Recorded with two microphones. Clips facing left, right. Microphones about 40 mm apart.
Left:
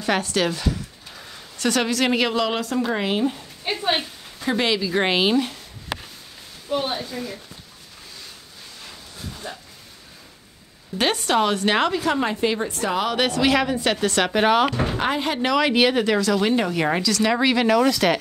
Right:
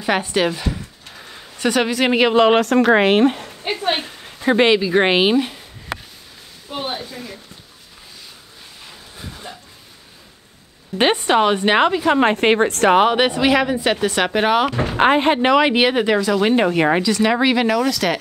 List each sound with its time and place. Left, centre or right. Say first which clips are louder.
0.0 s speech: right 3 dB; centre
1.1 s a sound: right 4 dB; centre
2.3 s speech: right 10 dB; right
2.6 s speech: right 10 dB; right
3.8 s a woman's voice: right 1 dB; right
6.8 s a sound: even; centre
9.1 s dog: even; centre
11.0 s speech: right 5 dB; right
12.2 s speech: right 8 dB; right
13.0 s speech: right 5 dB; right
14.8 s speech: right 7 dB; right; by 17.6 s centre
17.6 s speech: even; centre